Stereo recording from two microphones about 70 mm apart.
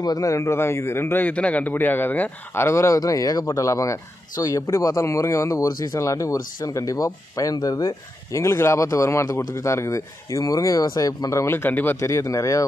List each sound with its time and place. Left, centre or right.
0.0 s a man's voice: left
2.5 s speech: left
8.4 s speech: left
11.4 s speech: left
12.0 s speech: left